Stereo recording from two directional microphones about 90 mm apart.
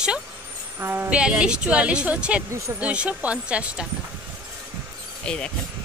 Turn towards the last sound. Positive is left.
turn(degrees=10)  # may be behind; listen again after turning